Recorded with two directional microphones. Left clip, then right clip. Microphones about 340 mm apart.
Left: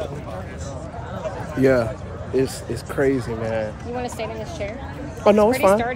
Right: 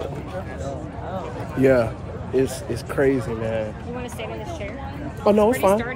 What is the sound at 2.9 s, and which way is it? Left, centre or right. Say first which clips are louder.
Speech: even; centre.